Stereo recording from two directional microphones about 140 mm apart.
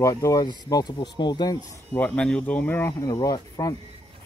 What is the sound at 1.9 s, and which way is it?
Speech, 10° left (ahead or behind).